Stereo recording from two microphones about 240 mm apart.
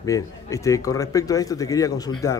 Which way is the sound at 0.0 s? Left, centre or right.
Centre.